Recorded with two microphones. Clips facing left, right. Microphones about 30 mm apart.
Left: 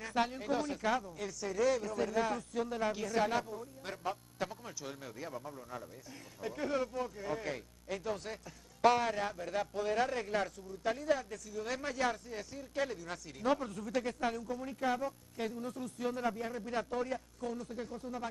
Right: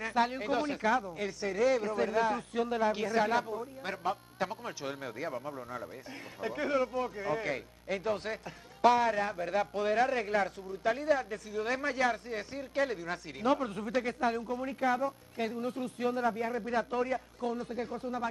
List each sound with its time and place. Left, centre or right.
0.2 s a man's voice: right